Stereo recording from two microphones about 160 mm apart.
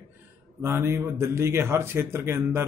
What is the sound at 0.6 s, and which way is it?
Speech, 15° right (ahead or behind).